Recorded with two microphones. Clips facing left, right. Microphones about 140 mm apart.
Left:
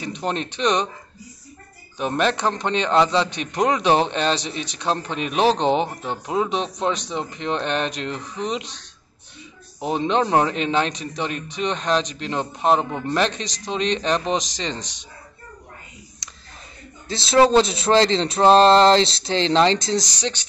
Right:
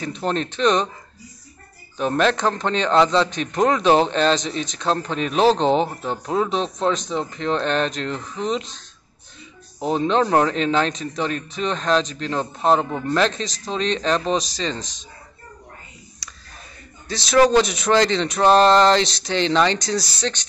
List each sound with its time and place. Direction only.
0.2 s a man's voice: 15° left (ahead or behind)
2.0 s a man's voice: 15° left (ahead or behind)
9.8 s a man's voice: 15° left (ahead or behind)
17.1 s speech: 25° left (ahead or behind)